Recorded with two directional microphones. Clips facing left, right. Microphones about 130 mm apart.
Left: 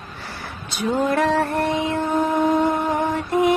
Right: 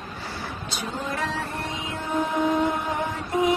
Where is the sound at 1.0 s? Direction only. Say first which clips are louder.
Left 11 dB; 60° left (ahead or behind).